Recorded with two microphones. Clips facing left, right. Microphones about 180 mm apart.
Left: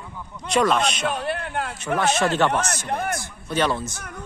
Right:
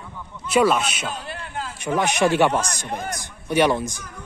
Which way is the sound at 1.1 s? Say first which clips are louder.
Left 6 dB; 65° left (ahead or behind).